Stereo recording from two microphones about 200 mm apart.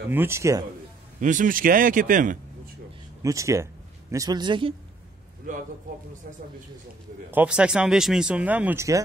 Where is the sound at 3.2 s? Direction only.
15° right (ahead or behind).